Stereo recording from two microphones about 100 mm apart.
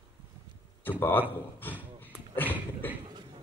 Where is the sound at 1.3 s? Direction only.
20° left (ahead or behind).